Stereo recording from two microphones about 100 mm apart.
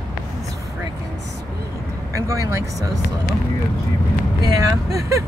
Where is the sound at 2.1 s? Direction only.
30° right (ahead or behind).